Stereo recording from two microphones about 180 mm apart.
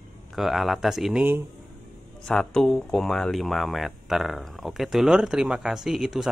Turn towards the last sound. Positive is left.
turn(degrees=-5)  # may be behind; listen again after turning